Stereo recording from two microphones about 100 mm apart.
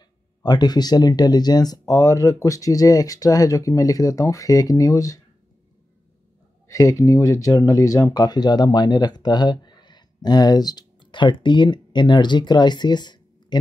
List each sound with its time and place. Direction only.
0.4 s speech: 45° left (ahead or behind)
6.7 s speech: 35° left (ahead or behind)